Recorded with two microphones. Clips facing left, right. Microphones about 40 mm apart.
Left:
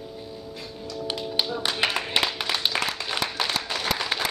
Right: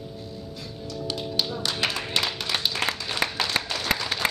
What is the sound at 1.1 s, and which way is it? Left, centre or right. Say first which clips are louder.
Tap: left 1 dB; left.